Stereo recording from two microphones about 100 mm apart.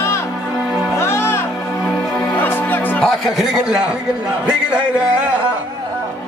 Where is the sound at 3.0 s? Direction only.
5° right (ahead or behind).